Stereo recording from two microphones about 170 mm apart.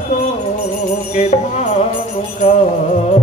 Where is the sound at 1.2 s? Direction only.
40° left (ahead or behind).